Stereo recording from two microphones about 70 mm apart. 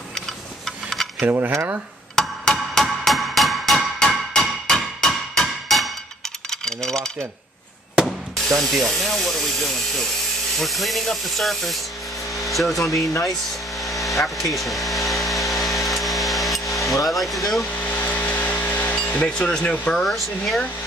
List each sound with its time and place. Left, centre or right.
0.7 s a sound: centre
1.3 s speech: right
2.1 s music: centre
6.5 s a sound: centre
8.5 s speech: centre
12.3 s a sound: centre
12.9 s speech: left
13.3 s vehicle: centre
14.4 s vacuum cleaner: centre
16.9 s speech: centre
17.7 s a sound: left
19.2 s speech: centre
20.0 s speech: centre